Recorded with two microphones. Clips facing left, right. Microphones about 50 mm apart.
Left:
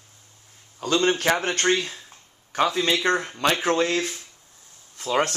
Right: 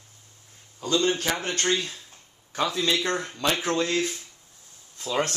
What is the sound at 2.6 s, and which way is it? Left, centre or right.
Speech, left.